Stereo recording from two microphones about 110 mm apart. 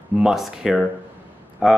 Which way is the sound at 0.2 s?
5° right (ahead or behind).